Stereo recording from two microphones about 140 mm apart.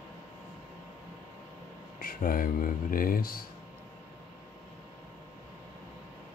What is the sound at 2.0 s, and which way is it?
Speech, 85° left.